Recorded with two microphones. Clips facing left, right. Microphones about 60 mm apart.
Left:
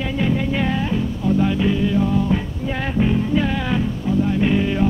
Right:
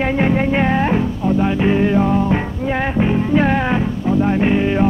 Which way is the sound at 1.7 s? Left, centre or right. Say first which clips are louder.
Right 4 dB; right.